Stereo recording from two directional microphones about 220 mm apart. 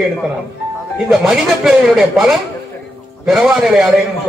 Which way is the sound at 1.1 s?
Centre (ahead or behind).